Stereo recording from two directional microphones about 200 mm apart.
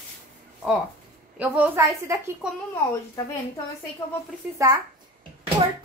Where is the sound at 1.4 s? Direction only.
10° right (ahead or behind).